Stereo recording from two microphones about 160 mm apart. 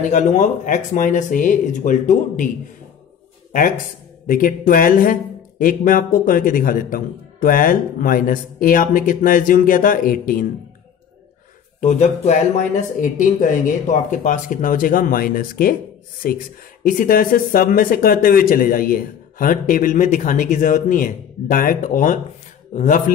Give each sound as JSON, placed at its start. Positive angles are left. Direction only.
{"t": 0.1, "sound": "speech", "side_deg": 50}
{"t": 4.3, "sound": "speech", "side_deg": 55}
{"t": 11.8, "sound": "speech", "side_deg": 45}